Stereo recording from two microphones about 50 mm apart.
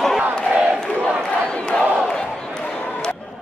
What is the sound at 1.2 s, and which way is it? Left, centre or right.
Crowd, left.